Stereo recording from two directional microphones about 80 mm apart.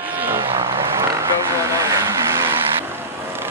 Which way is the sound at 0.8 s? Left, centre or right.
Right.